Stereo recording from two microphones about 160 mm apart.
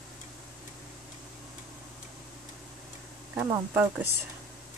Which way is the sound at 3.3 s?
10° right (ahead or behind).